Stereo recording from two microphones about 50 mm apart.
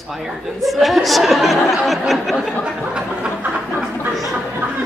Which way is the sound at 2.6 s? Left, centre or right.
Centre.